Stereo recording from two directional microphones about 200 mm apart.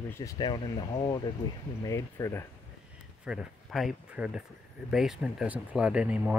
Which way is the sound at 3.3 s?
5° right (ahead or behind).